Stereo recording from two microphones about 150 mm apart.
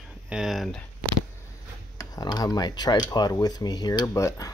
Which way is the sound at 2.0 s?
25° left (ahead or behind).